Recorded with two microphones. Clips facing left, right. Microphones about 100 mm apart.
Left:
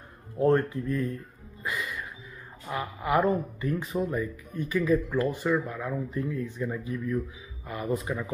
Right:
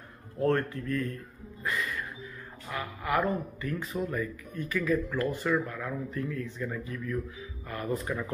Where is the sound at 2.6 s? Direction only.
20° left (ahead or behind).